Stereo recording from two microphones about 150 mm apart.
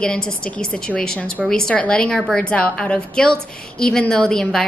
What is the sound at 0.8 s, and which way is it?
A woman's voice, 5° left (ahead or behind).